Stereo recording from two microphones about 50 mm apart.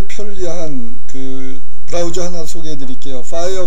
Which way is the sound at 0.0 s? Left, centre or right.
Centre.